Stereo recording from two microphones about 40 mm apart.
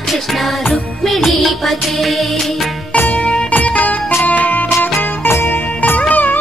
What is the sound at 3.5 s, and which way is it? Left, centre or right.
Music, left.